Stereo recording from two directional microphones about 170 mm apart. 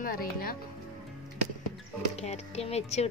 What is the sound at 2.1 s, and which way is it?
Speech, 40° left (ahead or behind).